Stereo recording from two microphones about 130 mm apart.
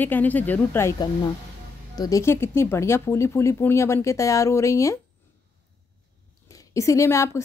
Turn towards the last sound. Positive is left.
turn(degrees=20)  # may be behind; listen again after turning